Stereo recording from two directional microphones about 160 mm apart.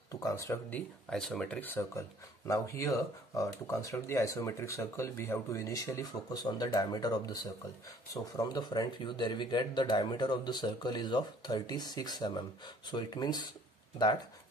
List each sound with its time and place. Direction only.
0.1 s speech: 20° left (ahead or behind)